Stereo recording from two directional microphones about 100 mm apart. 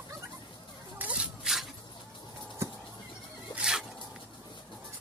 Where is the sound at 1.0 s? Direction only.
20° right (ahead or behind).